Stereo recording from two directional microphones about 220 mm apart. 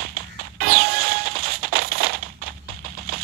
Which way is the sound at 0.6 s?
40° right (ahead or behind).